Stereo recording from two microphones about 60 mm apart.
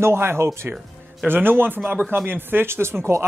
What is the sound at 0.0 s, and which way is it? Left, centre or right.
Speech, right.